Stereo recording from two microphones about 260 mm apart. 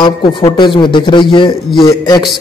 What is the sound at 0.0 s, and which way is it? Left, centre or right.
A man's voice, centre.